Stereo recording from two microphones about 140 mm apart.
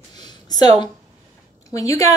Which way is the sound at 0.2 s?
30° left (ahead or behind).